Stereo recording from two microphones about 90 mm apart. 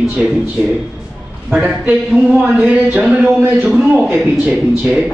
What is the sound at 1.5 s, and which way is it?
Speech, 5° right (ahead or behind).